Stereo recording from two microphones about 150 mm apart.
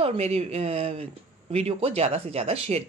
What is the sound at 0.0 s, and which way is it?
Speech, 45° right (ahead or behind).